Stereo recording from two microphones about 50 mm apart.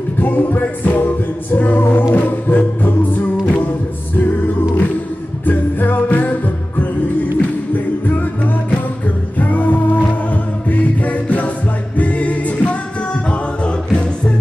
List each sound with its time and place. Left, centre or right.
0.2 s music: left
5.4 s music: left
7.3 s music: left